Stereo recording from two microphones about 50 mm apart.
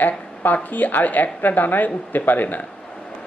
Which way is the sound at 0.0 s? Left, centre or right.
Left.